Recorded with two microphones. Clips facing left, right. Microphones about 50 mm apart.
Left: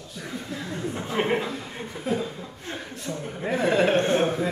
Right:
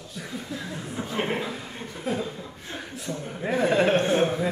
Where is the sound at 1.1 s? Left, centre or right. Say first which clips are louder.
Left 3 dB; centre.